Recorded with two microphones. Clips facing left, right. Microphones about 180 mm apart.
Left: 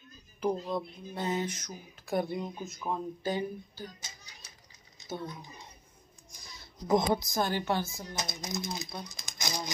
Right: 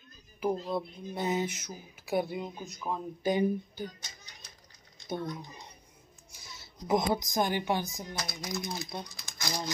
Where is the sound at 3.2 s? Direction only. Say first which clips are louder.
Right 5 dB; 15° right (ahead or behind).